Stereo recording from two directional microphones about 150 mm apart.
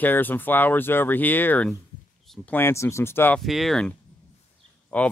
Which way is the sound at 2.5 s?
15° left (ahead or behind).